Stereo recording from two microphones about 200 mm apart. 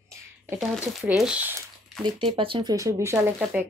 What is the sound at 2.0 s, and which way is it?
Speech, 25° right (ahead or behind).